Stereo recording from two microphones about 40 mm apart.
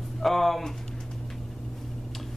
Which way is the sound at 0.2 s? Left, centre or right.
Centre.